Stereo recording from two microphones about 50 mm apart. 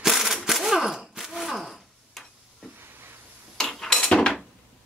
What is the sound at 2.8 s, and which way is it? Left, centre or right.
Hiss, right.